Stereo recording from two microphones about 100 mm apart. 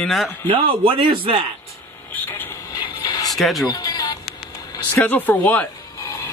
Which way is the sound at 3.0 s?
40° left (ahead or behind).